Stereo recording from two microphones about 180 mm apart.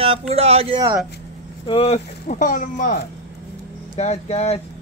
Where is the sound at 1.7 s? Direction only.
35° left (ahead or behind).